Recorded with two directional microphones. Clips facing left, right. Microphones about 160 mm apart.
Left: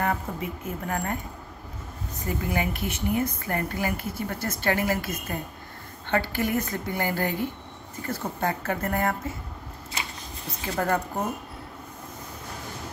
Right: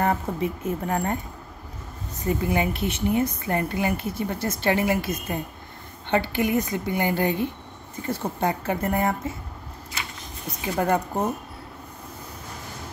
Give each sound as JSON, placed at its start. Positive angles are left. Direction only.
{"t": 0.0, "sound": "a woman's voice", "side_deg": -25}
{"t": 2.2, "sound": "a woman's voice", "side_deg": -25}
{"t": 10.6, "sound": "a woman's voice", "side_deg": -20}